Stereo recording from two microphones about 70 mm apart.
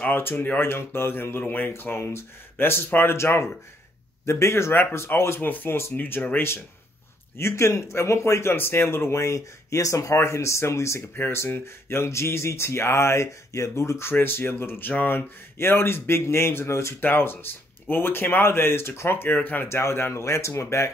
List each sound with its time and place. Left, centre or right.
0.1 s speech: left
11.1 s speech: left
19.7 s speech: left